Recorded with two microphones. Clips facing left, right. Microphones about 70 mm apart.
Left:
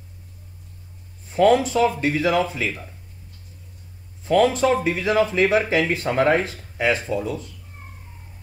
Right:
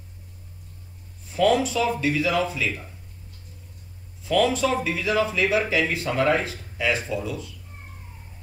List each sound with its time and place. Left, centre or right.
1.3 s speech: left
4.2 s a man's voice: left